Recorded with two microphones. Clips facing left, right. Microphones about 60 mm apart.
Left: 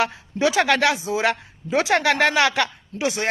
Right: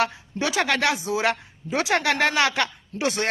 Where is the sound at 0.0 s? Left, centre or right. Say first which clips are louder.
Left 4 dB; left.